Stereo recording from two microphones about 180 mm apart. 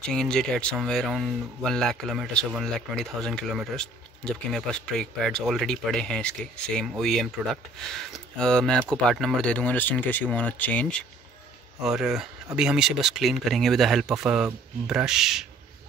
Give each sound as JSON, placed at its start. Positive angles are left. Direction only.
{"t": 0.1, "sound": "speech", "side_deg": 5}